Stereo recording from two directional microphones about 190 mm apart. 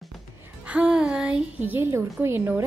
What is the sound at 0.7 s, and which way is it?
A woman's voice, 5° right (ahead or behind).